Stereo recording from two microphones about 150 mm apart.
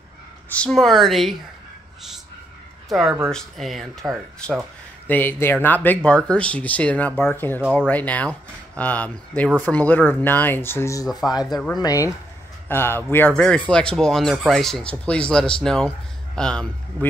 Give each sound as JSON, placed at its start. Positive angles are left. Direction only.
{"t": 0.5, "sound": "speech", "side_deg": 5}
{"t": 2.9, "sound": "speech", "side_deg": 0}
{"t": 11.1, "sound": "speech", "side_deg": 0}
{"t": 11.8, "sound": "speech", "side_deg": 20}